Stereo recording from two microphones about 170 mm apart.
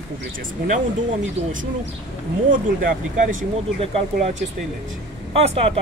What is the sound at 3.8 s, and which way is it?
Speech, 35° right (ahead or behind).